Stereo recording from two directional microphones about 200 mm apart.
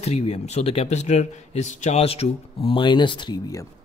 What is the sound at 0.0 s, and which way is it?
Speech, 30° left (ahead or behind).